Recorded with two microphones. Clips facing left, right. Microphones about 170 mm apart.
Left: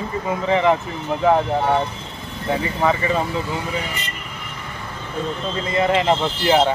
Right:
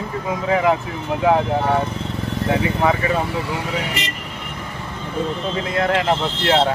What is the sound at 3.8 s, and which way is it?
Speech, 85° right.